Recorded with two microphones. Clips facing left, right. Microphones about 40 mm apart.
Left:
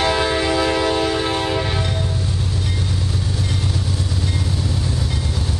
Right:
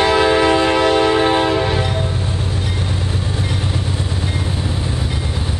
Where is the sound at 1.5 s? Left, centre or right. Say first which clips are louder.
Right 5 dB; centre.